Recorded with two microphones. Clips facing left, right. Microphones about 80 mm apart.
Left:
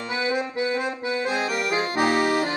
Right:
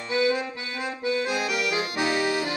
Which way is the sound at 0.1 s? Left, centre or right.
Left.